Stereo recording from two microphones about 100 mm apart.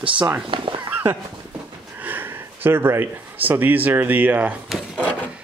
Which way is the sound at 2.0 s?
20° right (ahead or behind).